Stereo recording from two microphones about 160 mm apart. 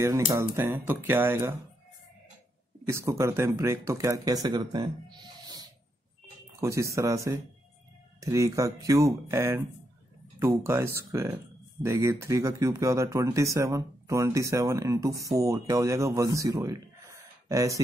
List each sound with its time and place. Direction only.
0.3 s speech: 15° right (ahead or behind)
2.9 s speech: 15° right (ahead or behind)
10.6 s speech: 15° right (ahead or behind)